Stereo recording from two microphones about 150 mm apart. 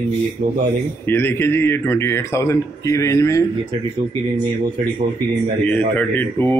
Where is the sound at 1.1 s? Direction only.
15° left (ahead or behind).